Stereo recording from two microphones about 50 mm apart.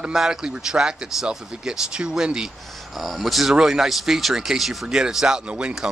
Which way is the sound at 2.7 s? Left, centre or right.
Centre.